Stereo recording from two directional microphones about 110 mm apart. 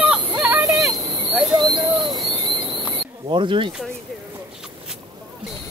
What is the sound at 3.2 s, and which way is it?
Speech, 50° right (ahead or behind).